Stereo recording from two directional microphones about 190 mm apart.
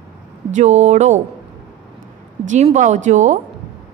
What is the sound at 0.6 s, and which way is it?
Speech, 35° right (ahead or behind).